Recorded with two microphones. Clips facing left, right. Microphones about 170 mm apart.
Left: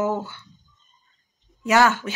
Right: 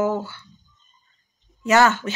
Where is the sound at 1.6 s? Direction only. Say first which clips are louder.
Right 1 dB; 10° left (ahead or behind).